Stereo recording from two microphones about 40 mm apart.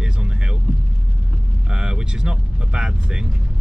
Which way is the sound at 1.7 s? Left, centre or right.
Right.